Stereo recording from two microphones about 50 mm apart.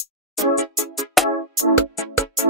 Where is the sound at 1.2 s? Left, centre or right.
Centre.